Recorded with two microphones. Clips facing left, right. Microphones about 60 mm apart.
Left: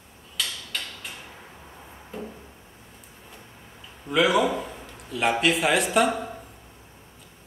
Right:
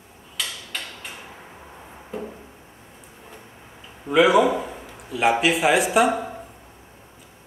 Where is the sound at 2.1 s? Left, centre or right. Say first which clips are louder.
Right 4 dB; centre.